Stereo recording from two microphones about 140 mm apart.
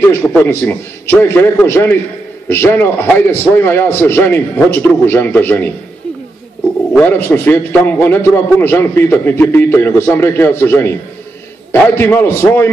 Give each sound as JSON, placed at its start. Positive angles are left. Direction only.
{"t": 0.1, "sound": "a man's voice", "side_deg": 15}
{"t": 6.9, "sound": "a man's voice", "side_deg": 10}